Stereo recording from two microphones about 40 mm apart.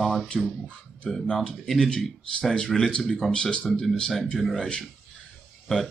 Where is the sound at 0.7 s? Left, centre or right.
Left.